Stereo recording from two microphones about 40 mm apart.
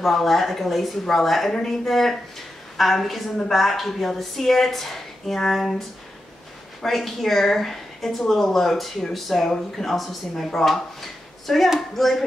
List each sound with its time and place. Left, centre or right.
0.0 s a woman's voice: centre